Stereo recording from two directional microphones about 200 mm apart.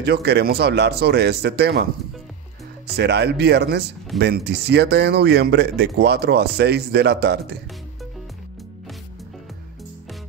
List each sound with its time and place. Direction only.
0.0 s speech: 55° right (ahead or behind)
3.0 s speech: 55° right (ahead or behind)